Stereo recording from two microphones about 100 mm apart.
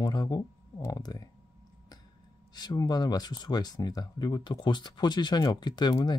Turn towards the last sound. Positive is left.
turn(degrees=45)  # may be behind; listen again after turning